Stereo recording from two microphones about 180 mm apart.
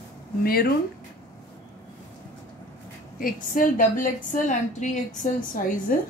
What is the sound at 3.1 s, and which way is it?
A woman's voice, 50° left (ahead or behind).